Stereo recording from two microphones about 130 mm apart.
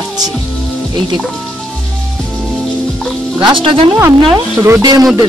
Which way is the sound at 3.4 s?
40° right (ahead or behind).